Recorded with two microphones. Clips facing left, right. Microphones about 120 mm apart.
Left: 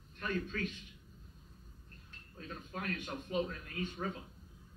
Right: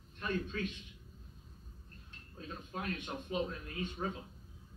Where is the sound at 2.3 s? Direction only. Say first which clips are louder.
Right 1 dB; 25° right (ahead or behind).